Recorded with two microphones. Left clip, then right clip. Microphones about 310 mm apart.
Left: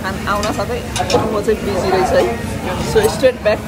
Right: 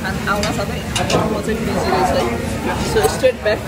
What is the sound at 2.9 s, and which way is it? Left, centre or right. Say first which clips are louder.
Speech: left 3 dB; centre.